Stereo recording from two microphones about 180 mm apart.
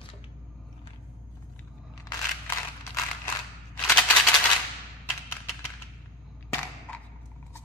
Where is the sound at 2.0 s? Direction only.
15° left (ahead or behind).